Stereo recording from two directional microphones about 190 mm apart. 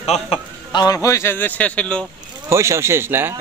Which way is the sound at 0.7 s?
20° left (ahead or behind).